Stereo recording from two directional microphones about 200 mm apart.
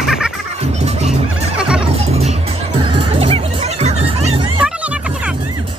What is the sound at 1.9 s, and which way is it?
Music, 30° right (ahead or behind).